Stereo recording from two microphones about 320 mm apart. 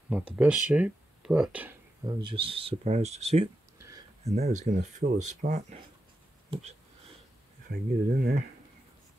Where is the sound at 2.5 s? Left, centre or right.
Right.